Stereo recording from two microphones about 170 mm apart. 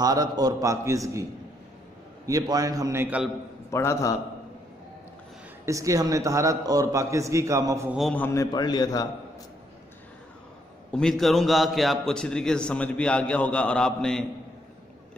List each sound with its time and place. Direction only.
0.0 s a man's voice: 20° right (ahead or behind)
2.2 s a man's voice: 20° right (ahead or behind)
3.7 s a man's voice: 15° left (ahead or behind)
5.7 s a man's voice: 20° right (ahead or behind)
8.1 s a man's voice: 15° left (ahead or behind)
10.9 s a man's voice: 5° left (ahead or behind)